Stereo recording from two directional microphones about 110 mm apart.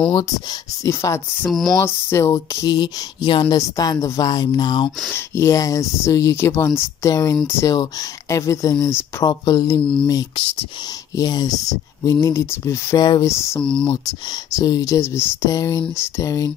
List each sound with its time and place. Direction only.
0.1 s speech: 40° left (ahead or behind)
0.8 s speech: 30° left (ahead or behind)
1.5 s speech: centre (ahead or behind)
2.0 s speech: 25° left (ahead or behind); by 3.5 s 45° left (ahead or behind)
3.5 s speech: 35° left (ahead or behind)
5.1 s speech: 25° left (ahead or behind)
11.1 s speech: 35° left (ahead or behind)
13.6 s speech: 10° left (ahead or behind)
13.8 s speech: 40° left (ahead or behind)